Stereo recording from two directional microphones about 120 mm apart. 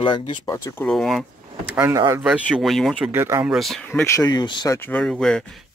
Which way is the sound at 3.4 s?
Centre (ahead or behind).